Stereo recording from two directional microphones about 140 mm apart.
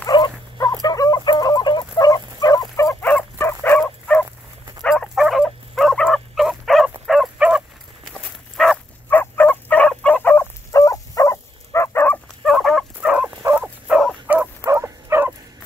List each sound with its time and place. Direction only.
0.0 s dog: 25° left (ahead or behind)
0.8 s fowl: 25° left (ahead or behind)
3.6 s dog: 10° left (ahead or behind)
7.1 s fowl: 5° right (ahead or behind)
8.1 s dog: centre (ahead or behind)
9.1 s fowl: 15° left (ahead or behind)
12.4 s dog: 5° left (ahead or behind)
13.4 s turkey: 15° right (ahead or behind)
14.7 s dog: 15° right (ahead or behind)